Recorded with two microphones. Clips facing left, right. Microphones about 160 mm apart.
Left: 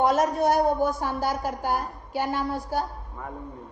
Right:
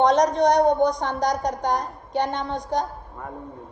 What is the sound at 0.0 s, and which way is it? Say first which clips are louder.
A woman's voice: right 4 dB; 5° left (ahead or behind).